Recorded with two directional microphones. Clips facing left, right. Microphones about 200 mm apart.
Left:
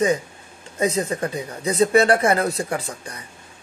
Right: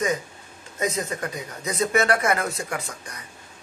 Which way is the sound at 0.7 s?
30° left (ahead or behind).